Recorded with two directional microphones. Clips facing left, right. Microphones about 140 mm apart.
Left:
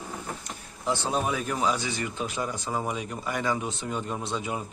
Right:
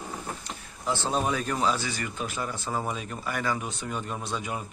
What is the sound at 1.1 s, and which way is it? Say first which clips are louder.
Speech: right 2 dB; 5° left (ahead or behind).